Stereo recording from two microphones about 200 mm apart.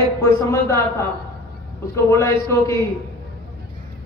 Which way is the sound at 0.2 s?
15° left (ahead or behind).